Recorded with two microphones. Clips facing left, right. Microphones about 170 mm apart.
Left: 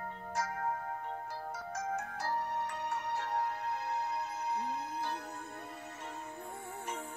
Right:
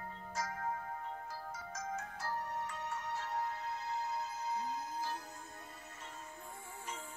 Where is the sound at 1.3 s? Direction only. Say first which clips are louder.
Left 5 dB; 65° left (ahead or behind).